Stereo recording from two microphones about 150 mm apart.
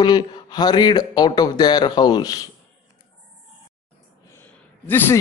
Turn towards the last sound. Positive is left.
turn(degrees=15)  # may be behind; listen again after turning